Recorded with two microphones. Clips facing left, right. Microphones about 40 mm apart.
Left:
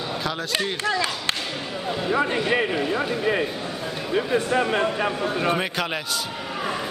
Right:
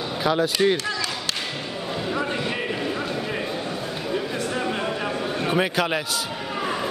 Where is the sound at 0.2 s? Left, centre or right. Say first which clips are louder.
Right 8 dB; centre.